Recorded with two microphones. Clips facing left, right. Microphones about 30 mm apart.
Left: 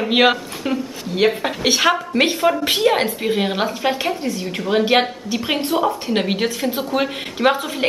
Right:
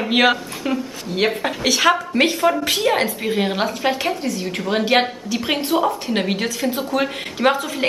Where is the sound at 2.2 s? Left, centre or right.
Centre.